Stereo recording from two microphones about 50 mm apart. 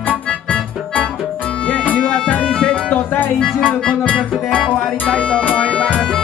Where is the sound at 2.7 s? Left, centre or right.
Left.